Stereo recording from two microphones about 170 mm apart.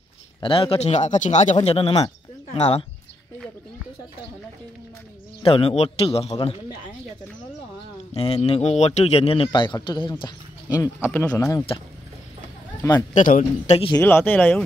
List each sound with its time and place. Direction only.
0.4 s a man's voice: 30° left (ahead or behind)
5.4 s a man's voice: 35° left (ahead or behind)
8.1 s a man's voice: 35° left (ahead or behind)
11.1 s speech: 10° left (ahead or behind)
13.1 s a man's voice: 50° left (ahead or behind)
13.9 s speech: 10° left (ahead or behind)